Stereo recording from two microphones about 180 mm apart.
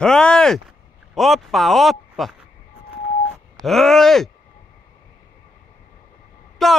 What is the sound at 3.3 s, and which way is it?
Wail, centre (ahead or behind).